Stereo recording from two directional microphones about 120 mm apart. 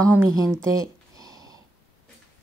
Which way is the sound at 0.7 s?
30° right (ahead or behind).